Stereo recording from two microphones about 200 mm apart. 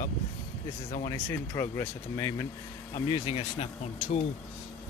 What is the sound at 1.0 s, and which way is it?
Speech, 15° left (ahead or behind).